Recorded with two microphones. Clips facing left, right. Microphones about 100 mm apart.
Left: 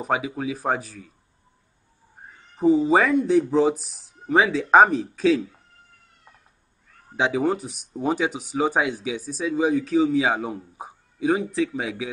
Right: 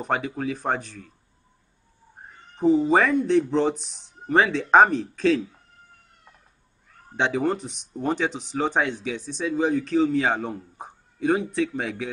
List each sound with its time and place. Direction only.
0.0 s speech: 5° left (ahead or behind)
2.5 s speech: 10° left (ahead or behind)
7.2 s speech: 5° left (ahead or behind)